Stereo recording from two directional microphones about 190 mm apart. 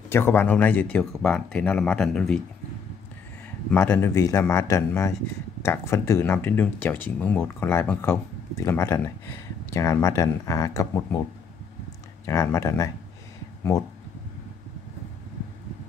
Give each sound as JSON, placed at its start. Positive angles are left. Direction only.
{"t": 0.1, "sound": "speech", "side_deg": 10}
{"t": 3.7, "sound": "speech", "side_deg": 10}
{"t": 12.3, "sound": "speech", "side_deg": 15}